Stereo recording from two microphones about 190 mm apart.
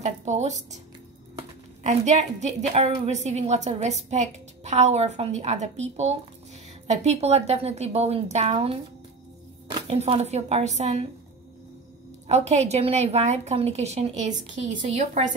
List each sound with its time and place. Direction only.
0.0 s speech: 35° right (ahead or behind)
1.8 s a woman's voice: 35° right (ahead or behind)
9.8 s a woman's voice: 30° right (ahead or behind)
12.3 s a woman's voice: 35° right (ahead or behind)